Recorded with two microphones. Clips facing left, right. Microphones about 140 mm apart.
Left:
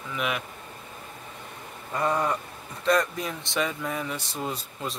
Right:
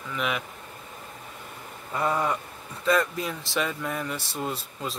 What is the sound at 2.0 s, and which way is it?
Speech, 5° right (ahead or behind).